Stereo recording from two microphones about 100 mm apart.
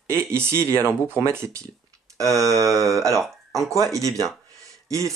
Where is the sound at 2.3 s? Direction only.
35° right (ahead or behind).